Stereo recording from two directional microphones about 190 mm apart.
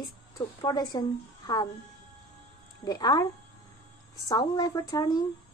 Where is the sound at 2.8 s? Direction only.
20° left (ahead or behind).